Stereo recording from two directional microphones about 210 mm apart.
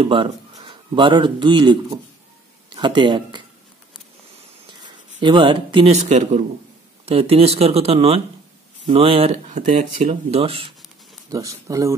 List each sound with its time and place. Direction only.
0.0 s speech: 25° right (ahead or behind)
4.8 s speech: 25° right (ahead or behind)
11.2 s speech: 15° right (ahead or behind)